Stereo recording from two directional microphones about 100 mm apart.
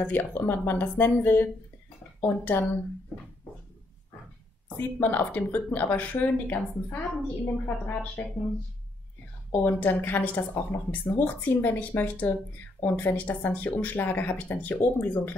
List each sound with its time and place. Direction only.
0.0 s a woman's voice: 15° left (ahead or behind)
4.7 s speech: 15° left (ahead or behind)
9.5 s a woman's voice: 20° left (ahead or behind)